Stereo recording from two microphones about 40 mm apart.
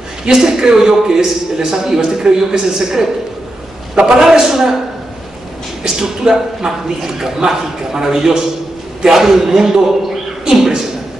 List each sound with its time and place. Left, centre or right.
0.3 s a man's voice: centre
4.2 s a man's voice: centre
5.9 s a man's voice: centre